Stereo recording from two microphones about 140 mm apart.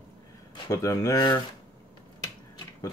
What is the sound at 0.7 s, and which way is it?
Speech, 25° left (ahead or behind).